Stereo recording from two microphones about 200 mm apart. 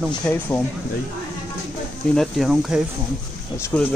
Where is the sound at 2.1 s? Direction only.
Centre (ahead or behind).